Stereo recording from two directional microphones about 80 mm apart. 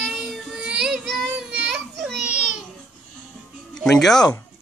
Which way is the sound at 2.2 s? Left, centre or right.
Centre.